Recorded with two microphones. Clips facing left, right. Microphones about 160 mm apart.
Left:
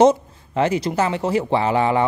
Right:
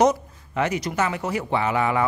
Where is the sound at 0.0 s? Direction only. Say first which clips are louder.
Left 5 dB; 30° left (ahead or behind).